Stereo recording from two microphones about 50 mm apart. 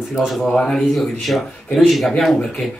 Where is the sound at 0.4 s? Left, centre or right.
Centre.